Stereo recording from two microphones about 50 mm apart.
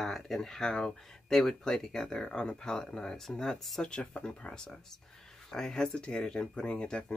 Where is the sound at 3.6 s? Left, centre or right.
Centre.